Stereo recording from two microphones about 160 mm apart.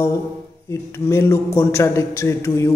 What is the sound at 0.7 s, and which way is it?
A man's voice, 15° left (ahead or behind).